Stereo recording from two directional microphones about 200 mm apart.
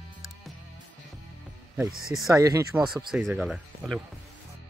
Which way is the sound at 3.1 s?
Centre (ahead or behind).